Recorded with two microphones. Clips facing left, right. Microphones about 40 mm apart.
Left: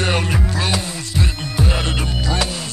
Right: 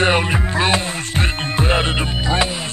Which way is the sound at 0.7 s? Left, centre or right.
Right.